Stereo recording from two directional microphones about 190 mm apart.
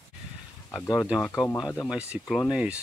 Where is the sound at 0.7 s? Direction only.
10° left (ahead or behind).